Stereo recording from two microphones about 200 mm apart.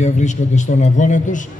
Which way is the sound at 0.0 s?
35° left (ahead or behind).